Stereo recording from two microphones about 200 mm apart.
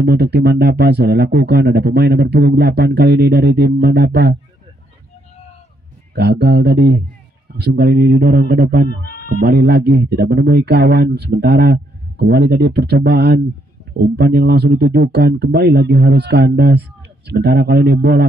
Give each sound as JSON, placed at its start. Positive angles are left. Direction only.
{"t": 0.0, "sound": "speech", "side_deg": -55}
{"t": 6.1, "sound": "speech", "side_deg": -55}
{"t": 9.0, "sound": "a sound", "side_deg": 45}
{"t": 9.4, "sound": "speech", "side_deg": -50}